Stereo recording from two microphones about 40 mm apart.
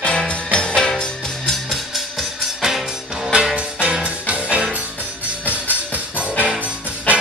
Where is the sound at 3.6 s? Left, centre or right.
Right.